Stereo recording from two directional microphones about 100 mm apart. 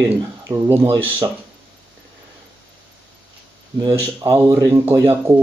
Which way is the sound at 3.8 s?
30° right (ahead or behind).